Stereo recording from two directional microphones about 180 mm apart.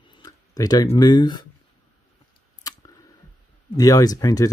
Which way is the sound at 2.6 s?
20° left (ahead or behind).